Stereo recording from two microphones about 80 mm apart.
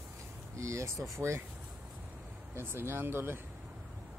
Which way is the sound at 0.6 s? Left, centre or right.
Right.